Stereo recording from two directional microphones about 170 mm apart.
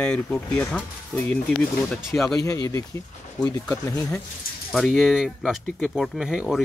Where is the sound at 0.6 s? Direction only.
5° left (ahead or behind).